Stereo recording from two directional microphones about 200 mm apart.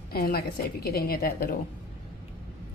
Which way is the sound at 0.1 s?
50° left (ahead or behind).